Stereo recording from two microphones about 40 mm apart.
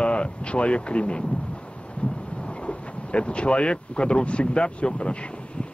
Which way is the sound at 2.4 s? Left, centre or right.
Left.